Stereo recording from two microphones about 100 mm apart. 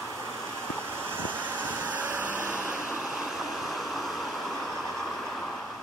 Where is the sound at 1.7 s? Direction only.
15° right (ahead or behind); by 4.5 s centre (ahead or behind).